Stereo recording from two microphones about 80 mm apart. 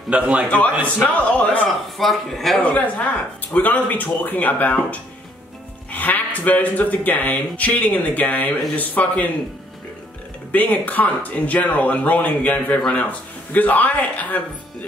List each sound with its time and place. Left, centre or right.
0.1 s a man's voice: centre
0.9 s speech: centre
2.0 s speech: centre
2.6 s speech: centre
5.9 s speech: left
10.5 s speech: left